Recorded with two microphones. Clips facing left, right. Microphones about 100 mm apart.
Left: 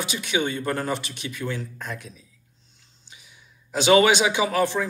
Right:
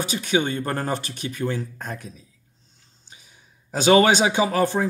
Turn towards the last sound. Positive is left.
turn(degrees=-35)  # may be behind; listen again after turning